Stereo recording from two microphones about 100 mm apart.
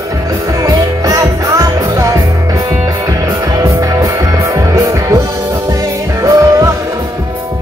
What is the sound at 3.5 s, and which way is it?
Music, 35° right (ahead or behind).